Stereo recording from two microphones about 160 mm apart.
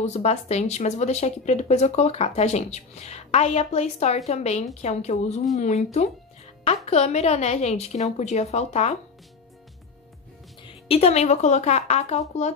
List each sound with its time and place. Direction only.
0.0 s a woman's voice: 40° left (ahead or behind)
10.9 s speech: 40° left (ahead or behind)